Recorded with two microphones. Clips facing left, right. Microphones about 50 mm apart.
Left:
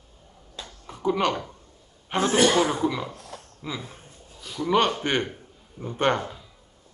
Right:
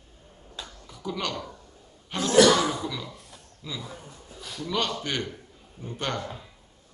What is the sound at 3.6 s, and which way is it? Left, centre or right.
Speech, left.